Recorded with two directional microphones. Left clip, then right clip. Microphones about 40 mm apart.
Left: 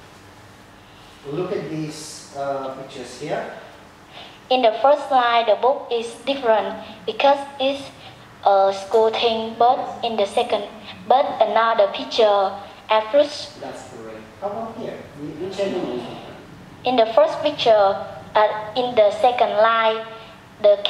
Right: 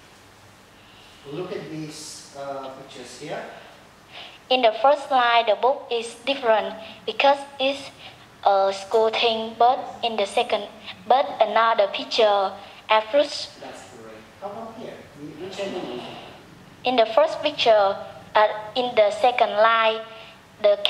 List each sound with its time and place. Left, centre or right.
1.3 s speech: centre
4.2 s a woman's voice: right
14.4 s a man's voice: centre; by 20.0 s right
20.2 s a sound: right